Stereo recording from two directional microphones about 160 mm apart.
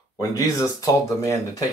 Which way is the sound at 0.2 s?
20° left (ahead or behind).